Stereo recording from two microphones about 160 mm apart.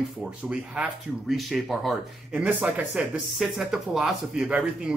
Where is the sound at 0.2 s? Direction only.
5° right (ahead or behind).